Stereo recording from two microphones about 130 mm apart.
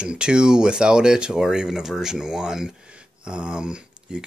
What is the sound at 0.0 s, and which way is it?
Speech, 5° right (ahead or behind).